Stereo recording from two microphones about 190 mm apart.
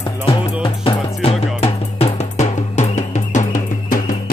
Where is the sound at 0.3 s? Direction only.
30° left (ahead or behind).